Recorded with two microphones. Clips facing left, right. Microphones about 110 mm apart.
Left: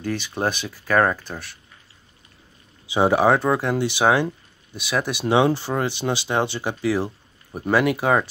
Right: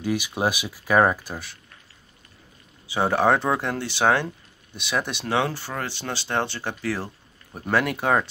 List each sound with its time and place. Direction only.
0.0 s speech: 10° right (ahead or behind)
2.9 s speech: 15° left (ahead or behind)
3.7 s speech: 15° left (ahead or behind)
5.2 s speech: 20° left (ahead or behind); by 8.3 s 5° left (ahead or behind)